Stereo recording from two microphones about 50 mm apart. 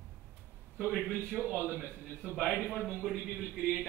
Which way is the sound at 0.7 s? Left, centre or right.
Right.